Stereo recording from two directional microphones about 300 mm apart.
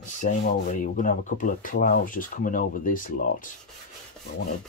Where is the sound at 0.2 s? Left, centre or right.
Left.